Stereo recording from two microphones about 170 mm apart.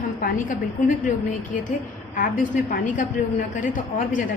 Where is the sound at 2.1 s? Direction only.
50° left (ahead or behind).